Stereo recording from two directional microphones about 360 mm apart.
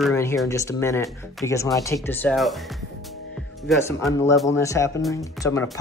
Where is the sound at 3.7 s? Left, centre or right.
Centre.